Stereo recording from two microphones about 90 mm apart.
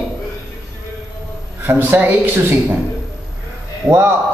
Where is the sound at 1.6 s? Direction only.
20° right (ahead or behind).